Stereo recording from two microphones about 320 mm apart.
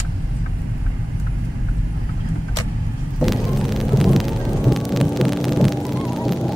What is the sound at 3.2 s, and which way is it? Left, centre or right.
Hum, centre.